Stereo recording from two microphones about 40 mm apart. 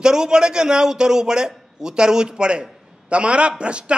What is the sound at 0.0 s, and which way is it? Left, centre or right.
A man's voice, centre.